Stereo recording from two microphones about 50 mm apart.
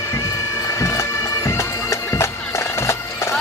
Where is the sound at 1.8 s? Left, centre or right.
Left.